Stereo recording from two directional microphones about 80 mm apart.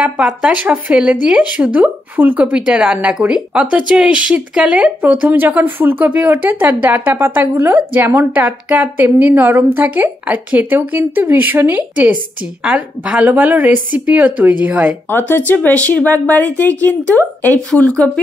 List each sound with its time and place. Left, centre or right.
0.0 s a woman's voice: centre
15.0 s speech: left